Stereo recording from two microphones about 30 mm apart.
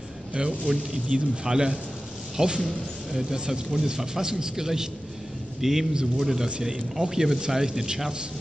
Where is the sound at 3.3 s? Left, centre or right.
Right.